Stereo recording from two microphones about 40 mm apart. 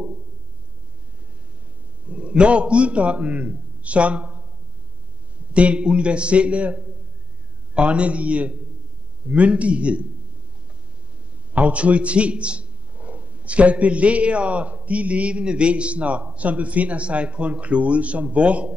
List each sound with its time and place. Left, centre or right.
2.0 s a man's voice: right
5.5 s a man's voice: right
11.5 s a man's voice: right